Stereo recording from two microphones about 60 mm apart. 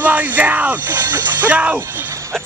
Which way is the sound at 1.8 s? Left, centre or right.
Right.